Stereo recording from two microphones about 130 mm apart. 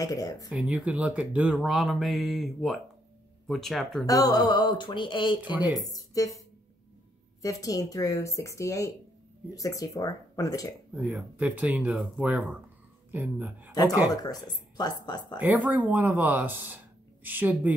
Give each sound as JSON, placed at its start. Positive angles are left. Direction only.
{"t": 0.0, "sound": "speech", "side_deg": 30}
{"t": 0.5, "sound": "speech", "side_deg": -10}
{"t": 1.6, "sound": "speech", "side_deg": 0}
{"t": 4.0, "sound": "speech", "side_deg": 30}
{"t": 7.4, "sound": "speech", "side_deg": 25}
{"t": 11.0, "sound": "speech", "side_deg": -10}
{"t": 14.1, "sound": "speech", "side_deg": 30}
{"t": 15.3, "sound": "speech", "side_deg": -15}